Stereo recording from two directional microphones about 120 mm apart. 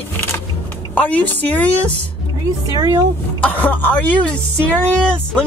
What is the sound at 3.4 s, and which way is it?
Speech, 10° left (ahead or behind).